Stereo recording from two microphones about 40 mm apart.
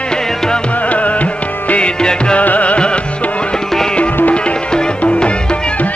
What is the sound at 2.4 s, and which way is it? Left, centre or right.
Music, left.